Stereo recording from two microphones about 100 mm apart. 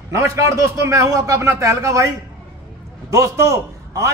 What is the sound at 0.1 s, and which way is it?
A man's voice, 30° right (ahead or behind).